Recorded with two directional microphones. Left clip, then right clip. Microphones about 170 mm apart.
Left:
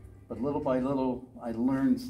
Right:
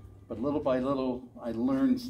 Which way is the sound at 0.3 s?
10° right (ahead or behind).